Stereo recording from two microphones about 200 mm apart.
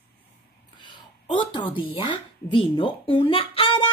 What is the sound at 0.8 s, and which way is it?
A woman's voice, 25° left (ahead or behind).